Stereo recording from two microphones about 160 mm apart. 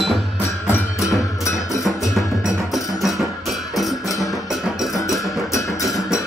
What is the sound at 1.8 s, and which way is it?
Music, centre (ahead or behind).